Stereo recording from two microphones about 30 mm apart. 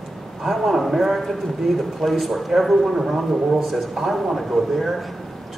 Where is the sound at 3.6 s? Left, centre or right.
Centre.